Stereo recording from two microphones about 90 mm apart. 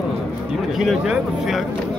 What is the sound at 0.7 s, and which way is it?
Speech, 5° right (ahead or behind).